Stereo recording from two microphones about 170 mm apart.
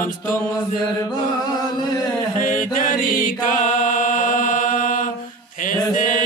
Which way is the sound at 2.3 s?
50° left (ahead or behind).